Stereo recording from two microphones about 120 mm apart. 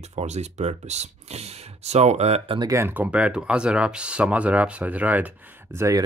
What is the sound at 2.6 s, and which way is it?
Speech, 25° right (ahead or behind).